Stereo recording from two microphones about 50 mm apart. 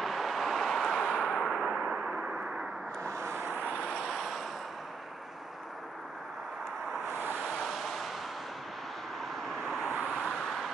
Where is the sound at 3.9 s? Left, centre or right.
Centre.